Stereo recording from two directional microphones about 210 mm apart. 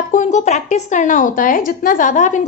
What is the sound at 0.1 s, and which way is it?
A woman's voice, 35° left (ahead or behind).